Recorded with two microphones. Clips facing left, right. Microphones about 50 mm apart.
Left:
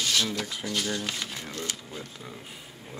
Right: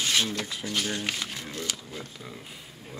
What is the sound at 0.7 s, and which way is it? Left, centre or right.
Speech, right.